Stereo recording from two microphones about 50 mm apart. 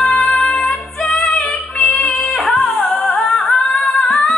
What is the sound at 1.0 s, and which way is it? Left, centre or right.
Music, centre.